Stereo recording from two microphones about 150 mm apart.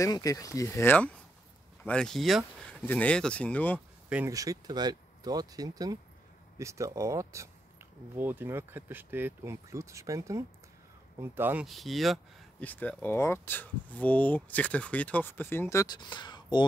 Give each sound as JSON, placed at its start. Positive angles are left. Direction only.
{"t": 0.0, "sound": "speech", "side_deg": 20}
{"t": 4.3, "sound": "speech", "side_deg": -25}
{"t": 11.6, "sound": "speech", "side_deg": 0}
{"t": 12.6, "sound": "speech", "side_deg": 10}